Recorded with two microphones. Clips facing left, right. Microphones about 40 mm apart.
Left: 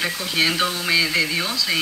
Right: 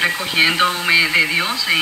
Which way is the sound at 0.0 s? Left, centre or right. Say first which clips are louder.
Right 5 dB; right.